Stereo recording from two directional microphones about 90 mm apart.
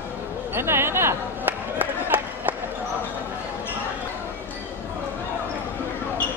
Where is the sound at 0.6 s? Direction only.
25° right (ahead or behind).